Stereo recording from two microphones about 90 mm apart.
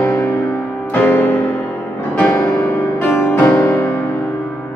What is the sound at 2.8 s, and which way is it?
Music, 25° left (ahead or behind).